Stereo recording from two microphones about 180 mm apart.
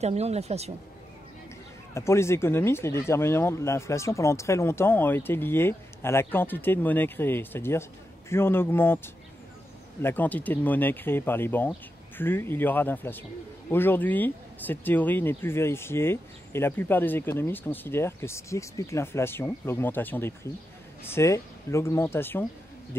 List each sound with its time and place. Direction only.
0.0 s speech: 35° right (ahead or behind)
2.0 s speech: 15° left (ahead or behind)